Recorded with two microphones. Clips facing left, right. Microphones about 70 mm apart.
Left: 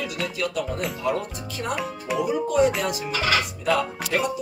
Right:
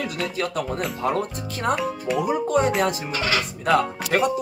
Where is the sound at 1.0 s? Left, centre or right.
Right.